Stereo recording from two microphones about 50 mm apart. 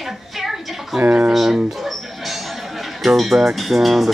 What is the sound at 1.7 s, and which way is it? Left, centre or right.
Music, centre.